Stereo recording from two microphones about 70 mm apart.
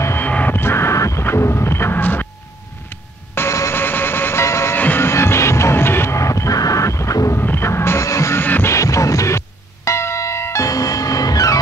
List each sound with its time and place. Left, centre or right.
0.2 s vehicle: left
1.2 s music: left
2.9 s vehicle: left
4.7 s music: left
7.3 s music: left
8.4 s music: left
8.7 s music: left
9.8 s bell: left
10.7 s music: left